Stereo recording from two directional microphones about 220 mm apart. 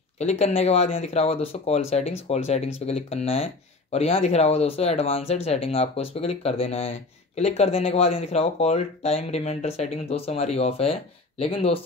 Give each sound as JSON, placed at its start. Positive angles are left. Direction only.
{"t": 0.2, "sound": "speech", "side_deg": 30}